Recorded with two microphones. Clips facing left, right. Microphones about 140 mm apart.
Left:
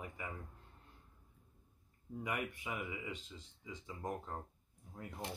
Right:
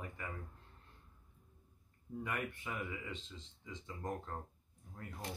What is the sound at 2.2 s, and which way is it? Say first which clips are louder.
Speech: left 1 dB; 15° left (ahead or behind).